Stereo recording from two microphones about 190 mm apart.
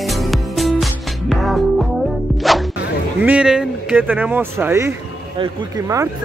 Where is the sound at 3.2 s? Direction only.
5° right (ahead or behind).